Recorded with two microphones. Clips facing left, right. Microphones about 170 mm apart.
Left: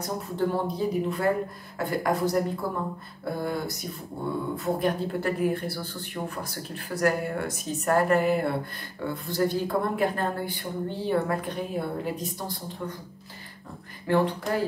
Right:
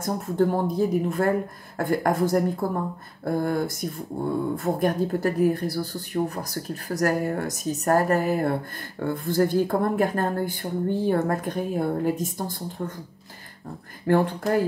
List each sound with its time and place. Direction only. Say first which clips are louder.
0.0 s speech: right 5 dB; 50° right (ahead or behind)
14.0 s speech: right 3 dB; 45° right (ahead or behind)